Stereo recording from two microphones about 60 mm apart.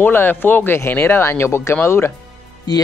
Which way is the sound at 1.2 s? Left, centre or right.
Left.